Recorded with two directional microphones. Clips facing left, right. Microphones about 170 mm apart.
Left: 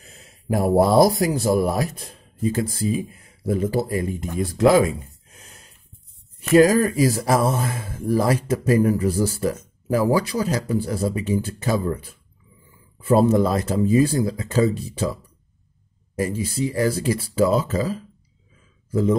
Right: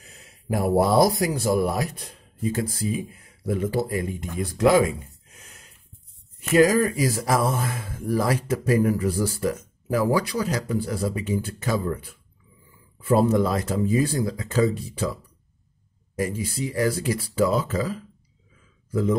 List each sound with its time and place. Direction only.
0.5 s speech: 30° left (ahead or behind)
6.5 s speech: 30° left (ahead or behind)
16.2 s speech: 30° left (ahead or behind)